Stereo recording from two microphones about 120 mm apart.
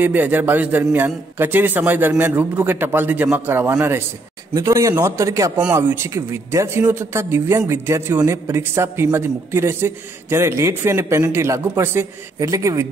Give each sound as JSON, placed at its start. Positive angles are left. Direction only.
{"t": 0.0, "sound": "a man's voice", "side_deg": -15}